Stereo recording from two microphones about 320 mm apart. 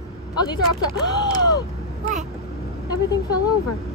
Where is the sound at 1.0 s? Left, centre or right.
Centre.